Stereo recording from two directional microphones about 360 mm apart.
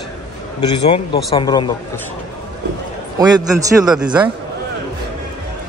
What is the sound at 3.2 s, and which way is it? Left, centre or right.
A man's voice, centre.